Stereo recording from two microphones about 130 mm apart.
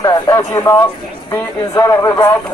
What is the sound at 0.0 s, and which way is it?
Speech, 25° left (ahead or behind).